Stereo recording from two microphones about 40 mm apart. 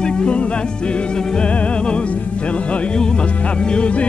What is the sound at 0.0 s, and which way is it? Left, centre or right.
Music, left.